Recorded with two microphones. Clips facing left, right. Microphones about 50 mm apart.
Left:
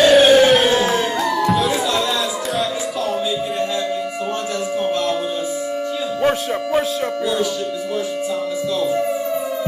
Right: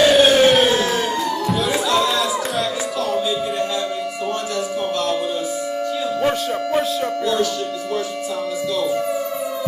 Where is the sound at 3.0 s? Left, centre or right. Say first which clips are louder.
Right 1 dB; centre.